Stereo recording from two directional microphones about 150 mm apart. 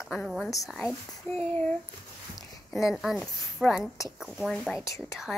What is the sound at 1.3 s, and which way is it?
Speech, 15° left (ahead or behind).